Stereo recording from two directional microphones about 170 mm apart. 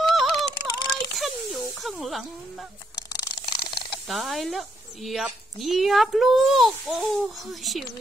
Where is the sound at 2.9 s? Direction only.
20° left (ahead or behind).